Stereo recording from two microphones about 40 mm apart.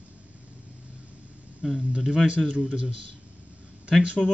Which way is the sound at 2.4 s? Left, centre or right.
Right.